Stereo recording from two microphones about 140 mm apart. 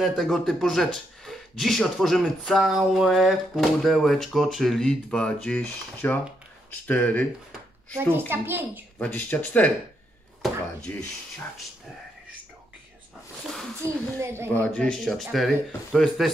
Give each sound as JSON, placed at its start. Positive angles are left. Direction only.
{"t": 0.0, "sound": "speech", "side_deg": 0}
{"t": 8.3, "sound": "a woman's voice", "side_deg": -15}
{"t": 8.9, "sound": "speech", "side_deg": 10}
{"t": 10.9, "sound": "speech", "side_deg": 15}
{"t": 13.8, "sound": "speech", "side_deg": -20}
{"t": 14.5, "sound": "speech", "side_deg": 10}